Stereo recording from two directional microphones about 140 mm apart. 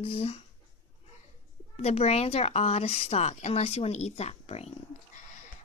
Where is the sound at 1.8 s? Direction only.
45° left (ahead or behind).